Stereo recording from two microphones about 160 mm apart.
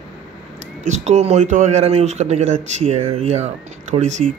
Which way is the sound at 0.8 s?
45° right (ahead or behind).